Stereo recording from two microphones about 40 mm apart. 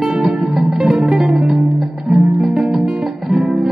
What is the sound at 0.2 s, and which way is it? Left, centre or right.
Music, centre.